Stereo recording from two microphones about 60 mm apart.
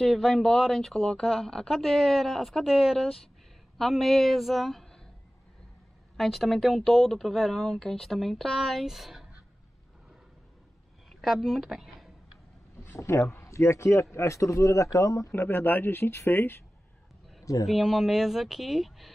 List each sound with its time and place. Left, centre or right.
0.0 s a woman's voice: centre
6.1 s speech: centre
11.1 s a woman's voice: centre
12.8 s a man's voice: left
15.3 s speech: left
17.6 s speech: centre